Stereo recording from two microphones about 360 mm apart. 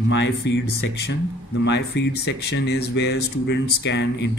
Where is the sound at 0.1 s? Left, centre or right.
Left.